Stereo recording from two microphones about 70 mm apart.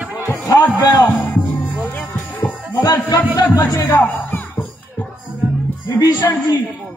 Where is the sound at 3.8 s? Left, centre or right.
Left.